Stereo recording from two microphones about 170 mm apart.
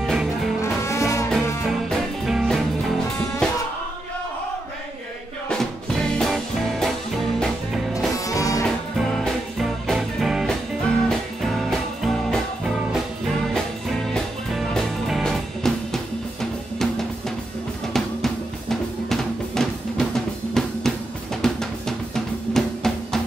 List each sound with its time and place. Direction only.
0.0 s music: centre (ahead or behind)
0.6 s music: 15° left (ahead or behind)
1.7 s music: centre (ahead or behind)
5.5 s music: 5° left (ahead or behind)
8.2 s music: 20° left (ahead or behind)
8.6 s music: centre (ahead or behind)
17.9 s drum: centre (ahead or behind)